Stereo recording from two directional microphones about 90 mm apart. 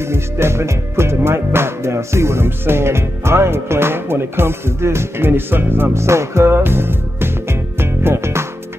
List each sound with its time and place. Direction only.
0.0 s music: 30° right (ahead or behind)